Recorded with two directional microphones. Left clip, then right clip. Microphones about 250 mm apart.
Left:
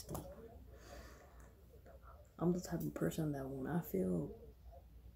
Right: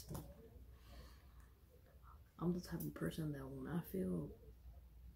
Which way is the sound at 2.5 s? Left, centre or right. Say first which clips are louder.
Left 6 dB; centre.